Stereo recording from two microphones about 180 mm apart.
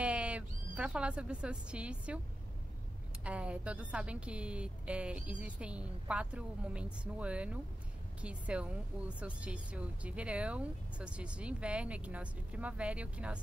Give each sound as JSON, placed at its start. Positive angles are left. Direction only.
{"t": 0.0, "sound": "speech", "side_deg": -5}
{"t": 3.3, "sound": "speech", "side_deg": -5}